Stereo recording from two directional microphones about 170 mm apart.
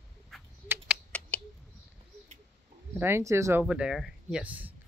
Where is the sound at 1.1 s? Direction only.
5° left (ahead or behind).